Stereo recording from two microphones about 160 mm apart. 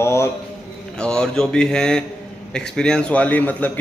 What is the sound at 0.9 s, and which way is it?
A man's voice, 5° left (ahead or behind).